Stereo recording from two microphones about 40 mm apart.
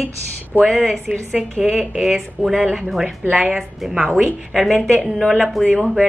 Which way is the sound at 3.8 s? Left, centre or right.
Centre.